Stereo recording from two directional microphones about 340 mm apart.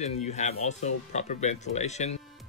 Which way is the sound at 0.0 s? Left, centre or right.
Centre.